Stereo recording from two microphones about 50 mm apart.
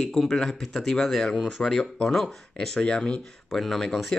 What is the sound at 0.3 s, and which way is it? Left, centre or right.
Speech, centre.